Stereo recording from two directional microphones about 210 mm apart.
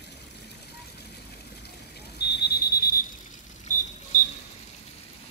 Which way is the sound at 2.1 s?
50° left (ahead or behind).